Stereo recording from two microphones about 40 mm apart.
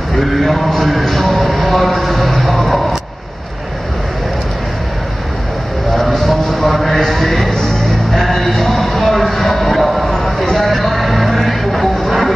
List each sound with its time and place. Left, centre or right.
0.3 s music: centre
1.6 s clip-clop: centre
5.9 s a sound: centre
7.5 s music: centre
8.2 s speech: centre
10.0 s a sound: centre
10.7 s music: centre